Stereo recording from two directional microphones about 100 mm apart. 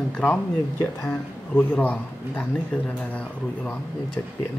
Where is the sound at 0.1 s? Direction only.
10° left (ahead or behind).